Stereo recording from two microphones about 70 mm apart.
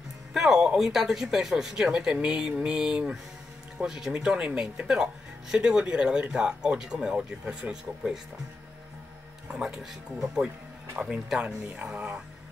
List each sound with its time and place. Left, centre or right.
0.3 s speech: centre
9.6 s speech: centre
11.3 s speech: centre